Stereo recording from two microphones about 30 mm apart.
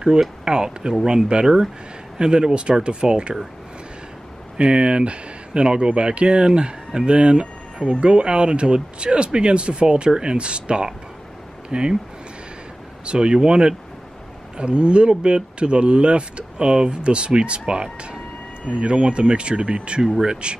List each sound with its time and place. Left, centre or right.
0.5 s speech: right
4.6 s speech: right
13.0 s speech: right
18.7 s speech: right